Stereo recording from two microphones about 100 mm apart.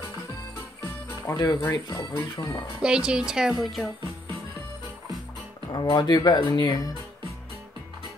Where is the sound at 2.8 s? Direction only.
10° right (ahead or behind).